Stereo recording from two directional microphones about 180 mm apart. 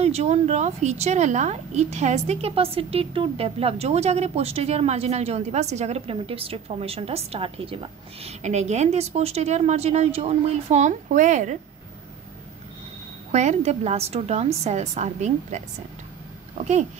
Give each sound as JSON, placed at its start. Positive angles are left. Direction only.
{"t": 0.0, "sound": "a woman's voice", "side_deg": -35}
{"t": 13.3, "sound": "a woman's voice", "side_deg": -40}